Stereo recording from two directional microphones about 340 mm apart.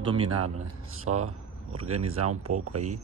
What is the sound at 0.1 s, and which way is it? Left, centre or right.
Speech, centre.